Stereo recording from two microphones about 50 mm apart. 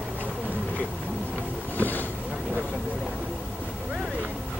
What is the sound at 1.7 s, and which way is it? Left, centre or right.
Boat, left.